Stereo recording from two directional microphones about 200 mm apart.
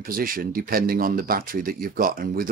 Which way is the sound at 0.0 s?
45° right (ahead or behind).